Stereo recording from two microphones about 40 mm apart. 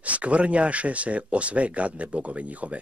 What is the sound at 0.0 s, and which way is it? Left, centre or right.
Speech, right.